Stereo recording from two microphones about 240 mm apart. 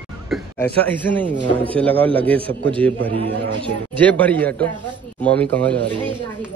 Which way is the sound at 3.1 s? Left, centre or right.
Right.